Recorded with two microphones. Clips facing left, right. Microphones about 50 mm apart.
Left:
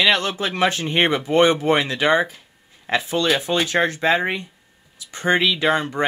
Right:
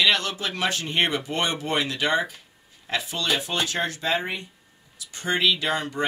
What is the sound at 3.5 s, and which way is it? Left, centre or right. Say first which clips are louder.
Speech: left 6 dB; left.